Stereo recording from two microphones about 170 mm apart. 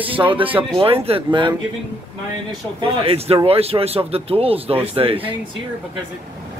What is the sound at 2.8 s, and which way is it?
Speech, 30° right (ahead or behind).